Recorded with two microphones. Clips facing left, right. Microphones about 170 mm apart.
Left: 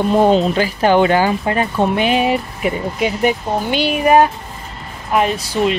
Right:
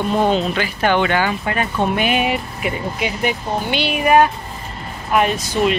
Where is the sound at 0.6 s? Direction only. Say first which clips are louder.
Left 5 dB; 35° left (ahead or behind).